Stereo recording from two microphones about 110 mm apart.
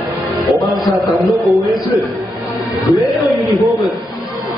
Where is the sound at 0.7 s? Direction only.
Centre (ahead or behind).